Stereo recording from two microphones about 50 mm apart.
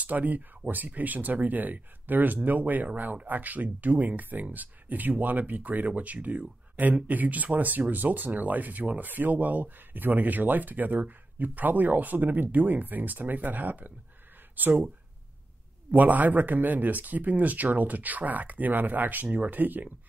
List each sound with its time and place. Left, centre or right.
0.0 s speech: right
15.9 s speech: right